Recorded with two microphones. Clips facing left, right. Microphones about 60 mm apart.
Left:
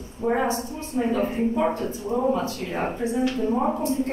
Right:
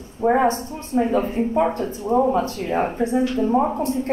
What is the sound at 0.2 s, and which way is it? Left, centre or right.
A woman's voice, right.